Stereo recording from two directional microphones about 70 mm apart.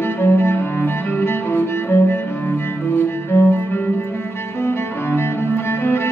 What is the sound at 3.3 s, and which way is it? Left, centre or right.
Cello, left.